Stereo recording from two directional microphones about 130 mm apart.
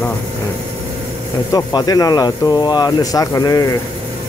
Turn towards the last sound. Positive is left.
turn(degrees=25)  # may be behind; listen again after turning